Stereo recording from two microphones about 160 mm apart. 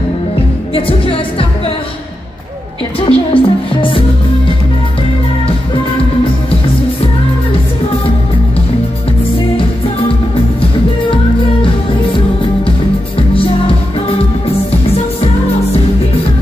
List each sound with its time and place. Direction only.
0.7 s music: 35° left (ahead or behind)
3.1 s music: 35° left (ahead or behind)